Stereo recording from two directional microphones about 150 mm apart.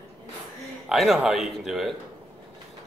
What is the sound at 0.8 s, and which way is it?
Speech, centre (ahead or behind).